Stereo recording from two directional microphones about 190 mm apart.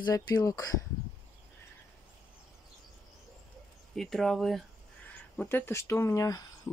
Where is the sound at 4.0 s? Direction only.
Centre (ahead or behind).